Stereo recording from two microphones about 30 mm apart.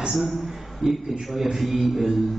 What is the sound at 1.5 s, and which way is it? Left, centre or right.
Speech, right.